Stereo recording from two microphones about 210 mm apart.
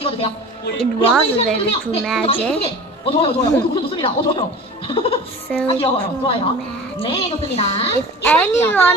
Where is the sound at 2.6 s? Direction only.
25° left (ahead or behind).